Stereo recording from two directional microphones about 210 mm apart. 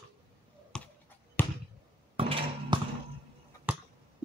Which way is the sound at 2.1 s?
25° right (ahead or behind).